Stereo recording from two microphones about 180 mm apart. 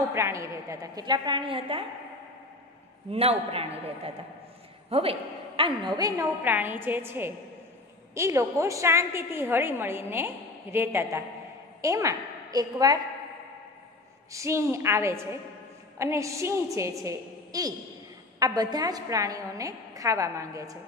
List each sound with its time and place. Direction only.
0.0 s a woman's voice: 15° right (ahead or behind)
3.1 s a man's voice: 35° right (ahead or behind)
14.3 s a woman's voice: 15° right (ahead or behind)